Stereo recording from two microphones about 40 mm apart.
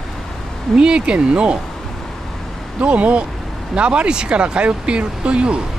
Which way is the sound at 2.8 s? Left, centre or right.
Right.